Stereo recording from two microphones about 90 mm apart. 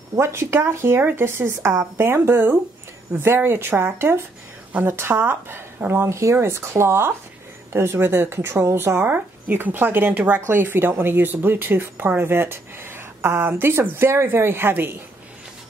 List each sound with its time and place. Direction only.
0.2 s a woman's voice: 30° right (ahead or behind)